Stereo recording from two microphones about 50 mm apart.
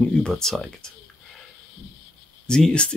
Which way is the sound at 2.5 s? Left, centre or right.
Centre.